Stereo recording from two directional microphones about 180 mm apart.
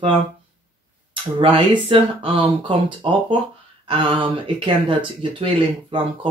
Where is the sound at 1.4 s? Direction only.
30° right (ahead or behind).